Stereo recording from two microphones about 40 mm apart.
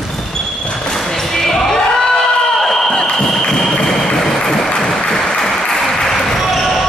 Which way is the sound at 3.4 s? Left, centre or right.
Centre.